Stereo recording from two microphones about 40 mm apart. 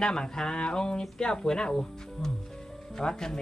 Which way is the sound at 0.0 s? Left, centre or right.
Centre.